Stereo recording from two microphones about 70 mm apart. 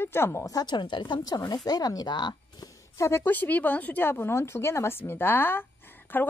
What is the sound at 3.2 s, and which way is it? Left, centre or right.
Speech, left.